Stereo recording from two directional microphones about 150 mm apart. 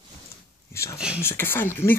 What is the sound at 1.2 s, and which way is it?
Speech, 15° left (ahead or behind).